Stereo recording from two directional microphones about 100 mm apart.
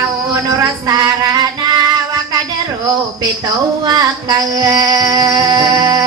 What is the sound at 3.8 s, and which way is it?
Female singing, 40° right (ahead or behind).